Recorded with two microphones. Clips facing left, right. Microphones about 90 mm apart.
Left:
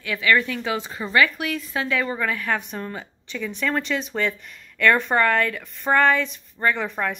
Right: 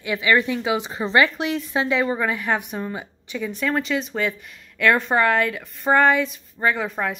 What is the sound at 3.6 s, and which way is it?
Speech, 5° right (ahead or behind).